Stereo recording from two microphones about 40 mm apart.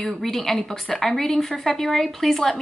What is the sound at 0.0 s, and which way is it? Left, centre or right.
A woman's voice, centre.